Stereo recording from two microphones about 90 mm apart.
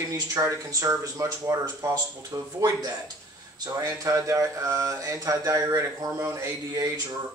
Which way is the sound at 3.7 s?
35° right (ahead or behind).